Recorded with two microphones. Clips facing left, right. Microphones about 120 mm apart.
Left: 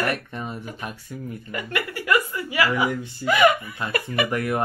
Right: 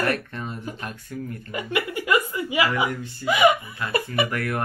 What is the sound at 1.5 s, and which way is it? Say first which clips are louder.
A woman's voice: right 3 dB; 20° right (ahead or behind).